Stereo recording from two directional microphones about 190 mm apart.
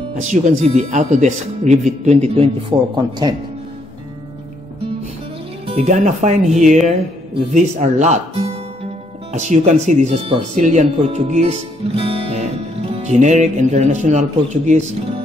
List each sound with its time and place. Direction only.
0.2 s speech: 35° right (ahead or behind)
5.7 s speech: 35° right (ahead or behind)